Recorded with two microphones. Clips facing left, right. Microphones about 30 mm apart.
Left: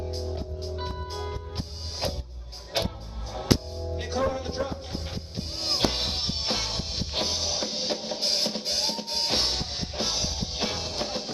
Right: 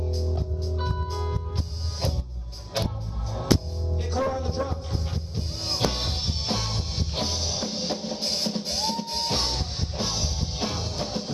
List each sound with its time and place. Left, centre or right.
0.1 s music: centre
2.8 s music: centre